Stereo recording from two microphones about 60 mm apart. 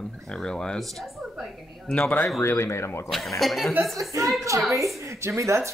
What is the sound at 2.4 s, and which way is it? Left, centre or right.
Speech, left.